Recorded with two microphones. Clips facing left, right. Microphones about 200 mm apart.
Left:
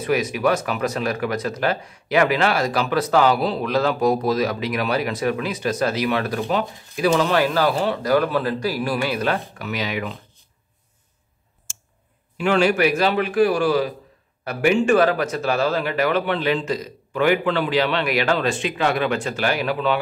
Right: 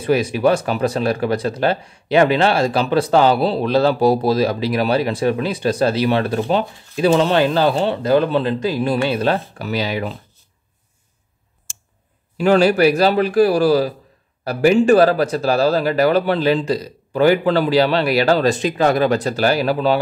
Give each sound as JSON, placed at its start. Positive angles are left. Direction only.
{"t": 0.0, "sound": "speech", "side_deg": -30}
{"t": 12.4, "sound": "speech", "side_deg": -35}